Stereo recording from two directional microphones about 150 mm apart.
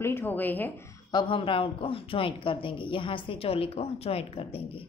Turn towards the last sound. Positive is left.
turn(degrees=40)  # may be behind; listen again after turning